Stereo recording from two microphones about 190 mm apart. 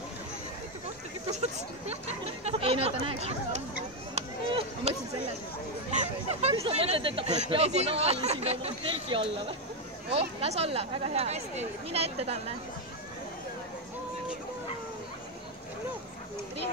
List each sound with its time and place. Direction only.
1.3 s speech: 35° right (ahead or behind)
4.1 s a sound: 35° right (ahead or behind)
5.9 s speech: 35° right (ahead or behind)